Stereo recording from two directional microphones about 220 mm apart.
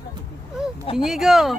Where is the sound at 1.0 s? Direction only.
Centre (ahead or behind).